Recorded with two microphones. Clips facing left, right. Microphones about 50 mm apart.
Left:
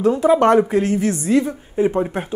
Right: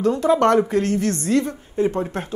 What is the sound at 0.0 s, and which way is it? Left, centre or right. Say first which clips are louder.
Speech: left 3 dB; centre.